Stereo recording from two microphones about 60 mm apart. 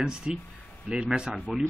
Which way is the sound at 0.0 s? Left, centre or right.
Centre.